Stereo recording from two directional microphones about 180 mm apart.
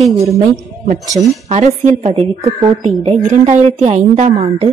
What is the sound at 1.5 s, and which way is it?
Speech, 40° right (ahead or behind).